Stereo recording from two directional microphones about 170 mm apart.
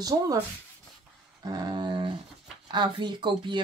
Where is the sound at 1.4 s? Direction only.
25° right (ahead or behind).